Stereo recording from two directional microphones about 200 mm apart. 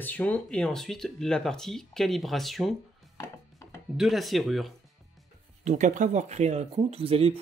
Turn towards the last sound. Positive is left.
turn(degrees=-30)  # may be behind; listen again after turning